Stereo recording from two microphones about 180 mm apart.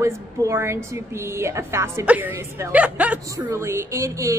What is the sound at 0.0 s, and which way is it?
A woman's voice, 15° right (ahead or behind).